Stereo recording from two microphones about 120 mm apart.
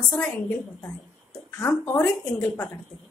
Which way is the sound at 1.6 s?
15° left (ahead or behind).